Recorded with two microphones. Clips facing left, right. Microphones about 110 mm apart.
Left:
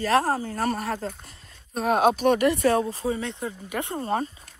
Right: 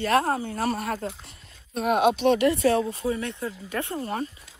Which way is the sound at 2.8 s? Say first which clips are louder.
Even; 30° left (ahead or behind).